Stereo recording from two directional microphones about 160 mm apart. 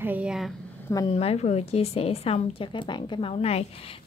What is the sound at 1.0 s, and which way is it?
Speech, 40° left (ahead or behind).